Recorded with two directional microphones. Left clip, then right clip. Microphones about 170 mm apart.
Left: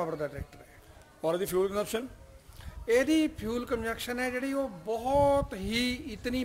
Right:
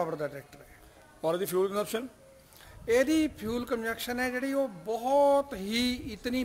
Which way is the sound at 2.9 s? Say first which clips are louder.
Even; 20° right (ahead or behind).